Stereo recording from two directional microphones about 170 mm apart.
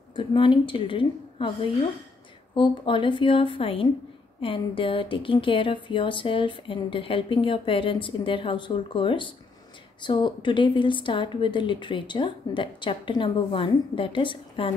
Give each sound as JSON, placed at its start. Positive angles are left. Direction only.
{"t": 0.1, "sound": "a woman's voice", "side_deg": 30}